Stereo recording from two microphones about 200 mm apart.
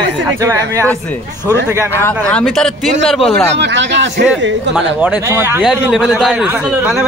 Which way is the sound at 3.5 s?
60° right (ahead or behind).